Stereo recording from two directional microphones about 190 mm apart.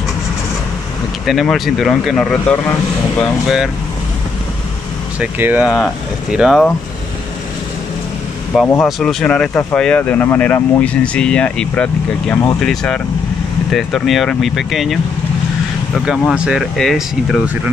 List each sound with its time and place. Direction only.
1.2 s speech: centre (ahead or behind)
5.2 s speech: 10° right (ahead or behind)
8.8 s speech: 5° left (ahead or behind)